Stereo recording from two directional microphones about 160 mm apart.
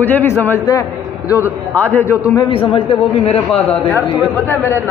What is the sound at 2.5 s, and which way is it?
A man's voice, 35° left (ahead or behind).